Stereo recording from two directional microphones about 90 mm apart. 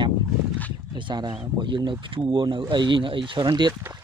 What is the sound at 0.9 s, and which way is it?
Speech, 55° right (ahead or behind).